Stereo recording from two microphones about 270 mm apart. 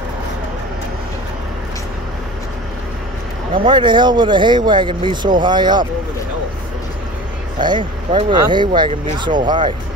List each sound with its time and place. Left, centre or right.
3.5 s speech: centre
7.6 s speech: centre